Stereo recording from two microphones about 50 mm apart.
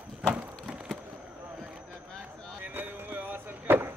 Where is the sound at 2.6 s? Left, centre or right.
Right.